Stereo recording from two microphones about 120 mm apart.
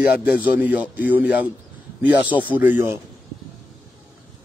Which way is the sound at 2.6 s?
15° right (ahead or behind).